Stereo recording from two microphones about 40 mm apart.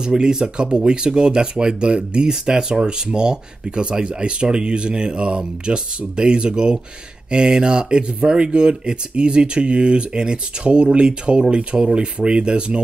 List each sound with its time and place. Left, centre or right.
0.0 s speech: centre